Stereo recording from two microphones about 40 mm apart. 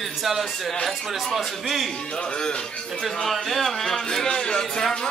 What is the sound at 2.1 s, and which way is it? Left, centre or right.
Speech, left.